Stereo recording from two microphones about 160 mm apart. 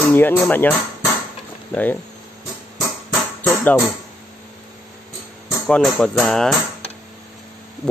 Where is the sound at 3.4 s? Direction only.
10° left (ahead or behind).